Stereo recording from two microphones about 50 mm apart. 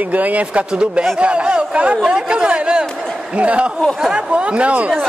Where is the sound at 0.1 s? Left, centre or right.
Right.